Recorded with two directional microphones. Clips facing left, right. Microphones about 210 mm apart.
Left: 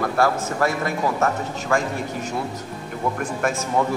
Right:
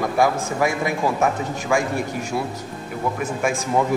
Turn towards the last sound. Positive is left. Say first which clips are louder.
# right 1 dB
turn(degrees=-10)  # may be behind; listen again after turning